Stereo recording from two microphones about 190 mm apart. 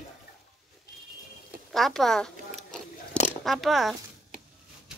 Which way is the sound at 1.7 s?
Centre (ahead or behind).